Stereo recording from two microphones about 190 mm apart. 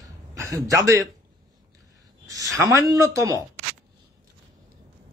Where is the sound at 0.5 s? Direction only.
15° right (ahead or behind).